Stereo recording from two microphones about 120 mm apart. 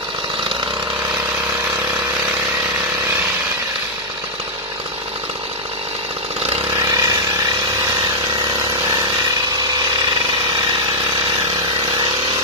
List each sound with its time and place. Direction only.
6.7 s vehicle: 30° right (ahead or behind)